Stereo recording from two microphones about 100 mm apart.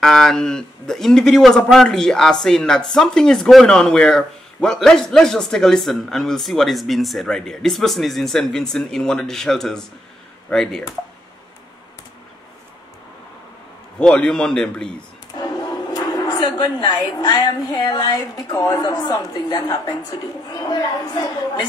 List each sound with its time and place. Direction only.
0.0 s a man's voice: 5° left (ahead or behind)
13.9 s a man's voice: 10° left (ahead or behind)
15.3 s a woman's voice: 45° left (ahead or behind)